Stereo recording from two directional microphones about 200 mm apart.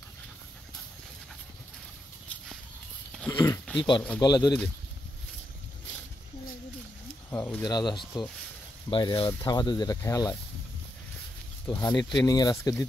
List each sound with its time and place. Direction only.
3.1 s dog: 10° left (ahead or behind)
4.2 s speech: 20° left (ahead or behind)
7.2 s speech: 10° left (ahead or behind)
11.6 s speech: 15° left (ahead or behind)